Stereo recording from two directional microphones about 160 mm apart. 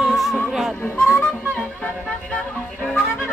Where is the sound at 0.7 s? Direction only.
15° left (ahead or behind).